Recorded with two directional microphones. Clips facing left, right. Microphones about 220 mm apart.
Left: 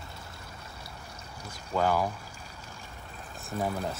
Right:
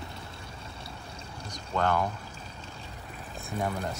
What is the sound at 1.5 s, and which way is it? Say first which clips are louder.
Speech: left 1 dB; 5° left (ahead or behind).